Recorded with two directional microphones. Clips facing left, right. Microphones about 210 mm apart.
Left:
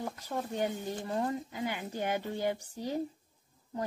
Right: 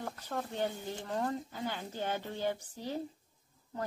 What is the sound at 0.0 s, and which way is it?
A woman's voice, 5° left (ahead or behind).